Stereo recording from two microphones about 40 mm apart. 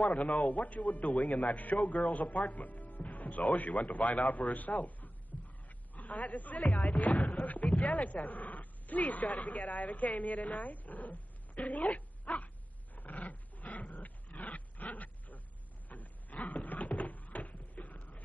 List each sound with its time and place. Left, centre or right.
0.0 s a man's voice: left
6.6 s speech: centre
7.3 s speech: left
12.9 s a sound: left